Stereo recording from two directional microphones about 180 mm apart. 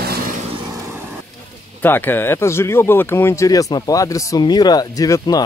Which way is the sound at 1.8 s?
10° left (ahead or behind).